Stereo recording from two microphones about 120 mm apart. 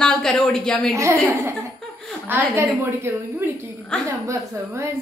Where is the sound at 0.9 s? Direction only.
25° right (ahead or behind).